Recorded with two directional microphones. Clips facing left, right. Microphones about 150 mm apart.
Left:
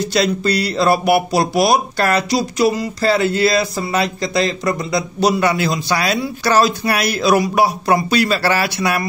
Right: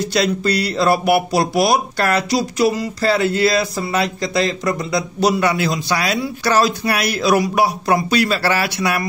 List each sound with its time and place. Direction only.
0.1 s speech: 25° left (ahead or behind)